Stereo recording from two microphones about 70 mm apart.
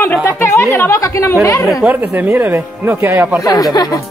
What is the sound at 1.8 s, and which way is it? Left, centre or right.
Speech, right.